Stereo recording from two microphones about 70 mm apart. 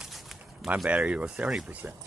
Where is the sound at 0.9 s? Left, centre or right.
Centre.